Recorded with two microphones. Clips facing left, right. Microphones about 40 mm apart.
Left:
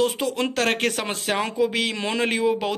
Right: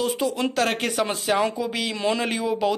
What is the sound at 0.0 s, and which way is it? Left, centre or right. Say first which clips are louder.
A man's voice: left 1 dB; left.